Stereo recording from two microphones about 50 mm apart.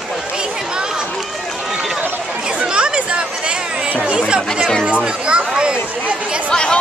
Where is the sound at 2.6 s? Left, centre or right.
Right.